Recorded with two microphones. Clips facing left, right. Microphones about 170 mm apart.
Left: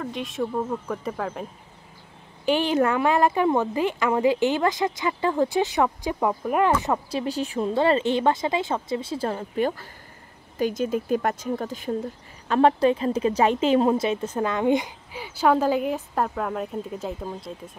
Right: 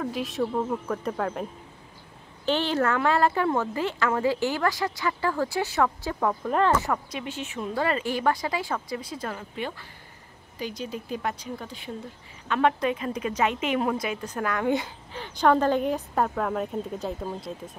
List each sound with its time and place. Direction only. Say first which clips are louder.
0.0 s a woman's voice: right 1 dB; centre (ahead or behind)
2.4 s a woman's voice: left 3 dB; 15° left (ahead or behind)
7.1 s speech: left 7 dB; 35° left (ahead or behind)
12.4 s speech: left 5 dB; 35° left (ahead or behind); by 15.2 s 20° left (ahead or behind)
15.2 s a woman's voice: left 1 dB; 5° left (ahead or behind)